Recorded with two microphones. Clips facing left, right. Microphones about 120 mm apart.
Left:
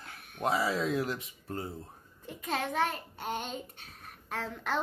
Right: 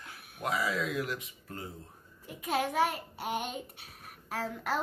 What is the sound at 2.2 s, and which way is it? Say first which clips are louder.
A child's voice: right 2 dB; 10° right (ahead or behind).